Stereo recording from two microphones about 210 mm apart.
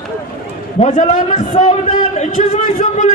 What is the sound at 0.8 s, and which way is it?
A man's voice, 35° left (ahead or behind).